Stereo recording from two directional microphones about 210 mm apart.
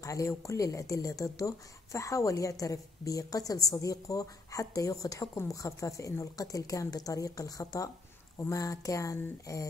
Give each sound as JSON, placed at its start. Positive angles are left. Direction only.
{"t": 0.0, "sound": "speech", "side_deg": 15}